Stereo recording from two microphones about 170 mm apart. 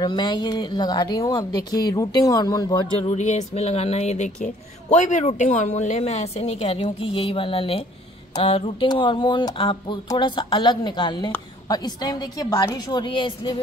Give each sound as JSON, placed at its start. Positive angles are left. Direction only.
{"t": 0.0, "sound": "speech", "side_deg": 25}
{"t": 3.0, "sound": "a woman's voice", "side_deg": 40}